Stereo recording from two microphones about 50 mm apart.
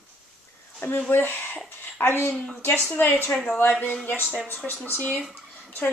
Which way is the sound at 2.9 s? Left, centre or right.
Left.